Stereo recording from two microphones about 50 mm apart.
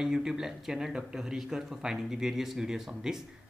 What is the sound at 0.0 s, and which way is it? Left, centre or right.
Speech, centre.